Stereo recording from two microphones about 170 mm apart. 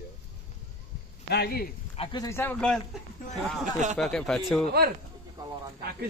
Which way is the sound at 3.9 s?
Centre (ahead or behind).